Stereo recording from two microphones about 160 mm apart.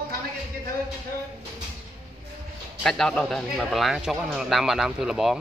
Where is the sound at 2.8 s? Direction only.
Centre (ahead or behind).